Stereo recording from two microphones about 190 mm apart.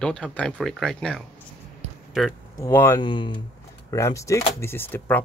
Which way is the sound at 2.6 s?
15° left (ahead or behind).